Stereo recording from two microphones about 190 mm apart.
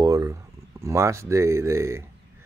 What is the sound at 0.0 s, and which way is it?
Speech, 15° right (ahead or behind).